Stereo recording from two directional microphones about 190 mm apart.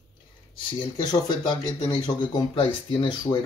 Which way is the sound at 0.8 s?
20° left (ahead or behind).